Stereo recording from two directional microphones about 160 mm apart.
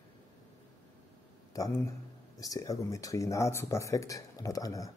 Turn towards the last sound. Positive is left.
turn(degrees=20)  # may be behind; listen again after turning